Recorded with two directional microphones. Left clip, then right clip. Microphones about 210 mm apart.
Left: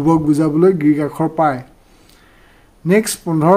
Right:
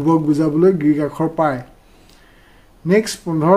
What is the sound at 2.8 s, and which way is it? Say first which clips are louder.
Speech: left 1 dB; 20° left (ahead or behind).